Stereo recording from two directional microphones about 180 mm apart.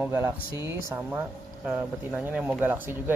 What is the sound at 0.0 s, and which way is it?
Speech, 10° right (ahead or behind).